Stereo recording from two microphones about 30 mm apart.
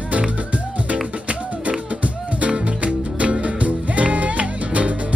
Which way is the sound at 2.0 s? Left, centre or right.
Right.